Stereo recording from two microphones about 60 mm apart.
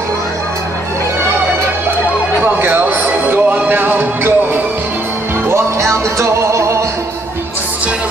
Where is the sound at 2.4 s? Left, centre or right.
Right.